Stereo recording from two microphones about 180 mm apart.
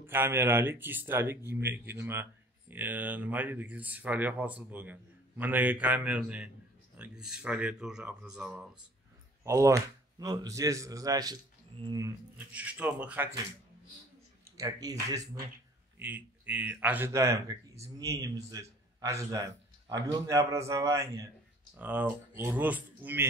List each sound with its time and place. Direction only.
0.0 s speech: 10° right (ahead or behind)
9.4 s speech: 15° right (ahead or behind)
14.6 s speech: 20° right (ahead or behind)
16.0 s speech: 10° right (ahead or behind)